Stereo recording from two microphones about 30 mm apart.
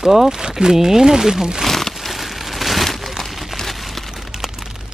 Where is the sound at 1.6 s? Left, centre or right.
Centre.